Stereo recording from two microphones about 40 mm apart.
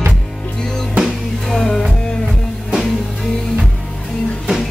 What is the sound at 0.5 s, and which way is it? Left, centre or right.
Music, centre.